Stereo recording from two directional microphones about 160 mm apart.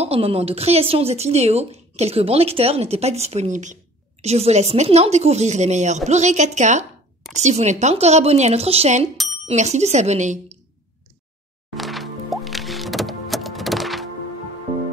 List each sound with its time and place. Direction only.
0.0 s a woman's voice: 35° right (ahead or behind)
9.1 s bicycle bell: centre (ahead or behind)
9.5 s a woman's voice: 45° right (ahead or behind)
11.7 s music: centre (ahead or behind)